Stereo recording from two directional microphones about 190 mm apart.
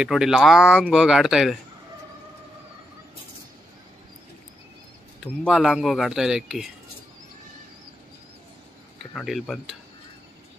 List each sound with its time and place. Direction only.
0.0 s speech: 5° right (ahead or behind)
5.4 s speech: centre (ahead or behind)
9.1 s speech: centre (ahead or behind)